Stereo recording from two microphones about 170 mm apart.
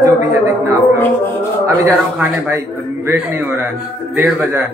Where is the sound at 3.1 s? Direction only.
15° right (ahead or behind).